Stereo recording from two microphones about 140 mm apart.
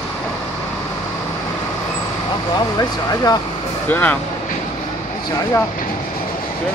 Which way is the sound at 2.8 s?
30° left (ahead or behind).